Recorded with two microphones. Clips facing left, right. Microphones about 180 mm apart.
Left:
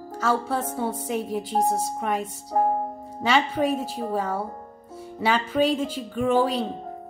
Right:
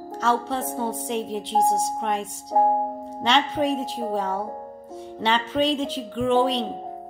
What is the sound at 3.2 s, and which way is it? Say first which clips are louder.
A woman's voice: even; 10° left (ahead or behind).